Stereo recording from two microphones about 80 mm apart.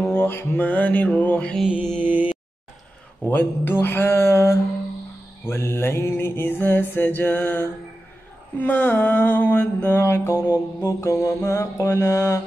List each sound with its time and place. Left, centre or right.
0.0 s mantra: left
1.9 s mantra: right
3.3 s mantra: left
3.8 s a sound: left
5.4 s mantra: left
9.9 s a sound: left
10.8 s mantra: left